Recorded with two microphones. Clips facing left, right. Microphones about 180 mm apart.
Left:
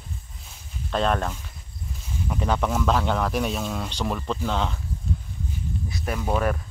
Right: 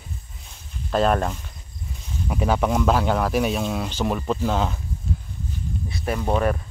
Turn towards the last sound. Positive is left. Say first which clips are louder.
# right 3 dB
turn(degrees=0)  # may be behind; listen again after turning